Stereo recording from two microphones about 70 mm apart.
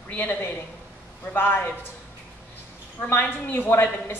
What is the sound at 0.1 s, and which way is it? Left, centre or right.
A man's voice, left.